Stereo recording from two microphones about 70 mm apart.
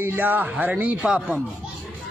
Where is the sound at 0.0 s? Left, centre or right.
Right.